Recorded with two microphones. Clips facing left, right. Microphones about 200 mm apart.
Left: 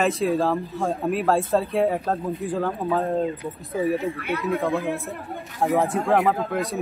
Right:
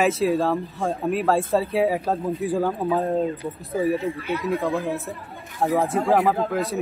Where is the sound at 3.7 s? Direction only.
35° right (ahead or behind).